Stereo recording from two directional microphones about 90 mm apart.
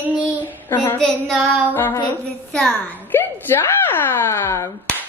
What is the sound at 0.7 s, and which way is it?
A woman's voice, 20° left (ahead or behind).